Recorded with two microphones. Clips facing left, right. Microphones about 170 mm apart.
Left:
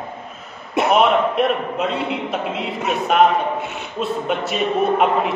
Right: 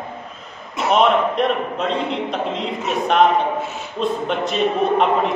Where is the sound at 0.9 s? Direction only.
5° left (ahead or behind).